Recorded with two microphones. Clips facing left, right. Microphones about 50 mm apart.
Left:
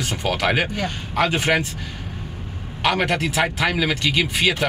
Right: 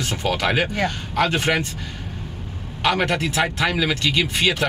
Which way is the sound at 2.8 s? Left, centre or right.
Centre.